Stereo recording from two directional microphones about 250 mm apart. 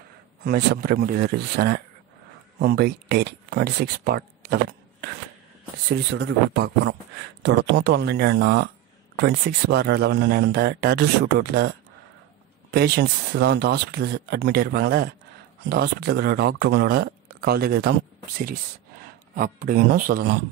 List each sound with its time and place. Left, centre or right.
0.4 s speech: right
12.7 s speech: right
19.3 s speech: right